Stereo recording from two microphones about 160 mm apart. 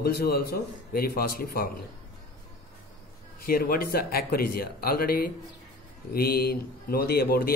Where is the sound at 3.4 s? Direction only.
70° left (ahead or behind).